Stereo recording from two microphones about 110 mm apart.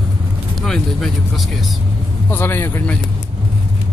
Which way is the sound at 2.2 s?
20° left (ahead or behind).